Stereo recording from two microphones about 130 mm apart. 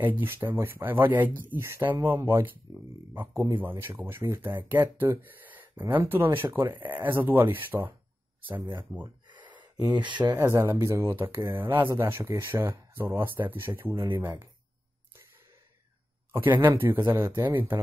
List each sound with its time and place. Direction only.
0.2 s speech: 15° right (ahead or behind)
9.3 s a sound: 35° right (ahead or behind)
10.3 s speech: 20° right (ahead or behind)
16.3 s speech: 15° right (ahead or behind)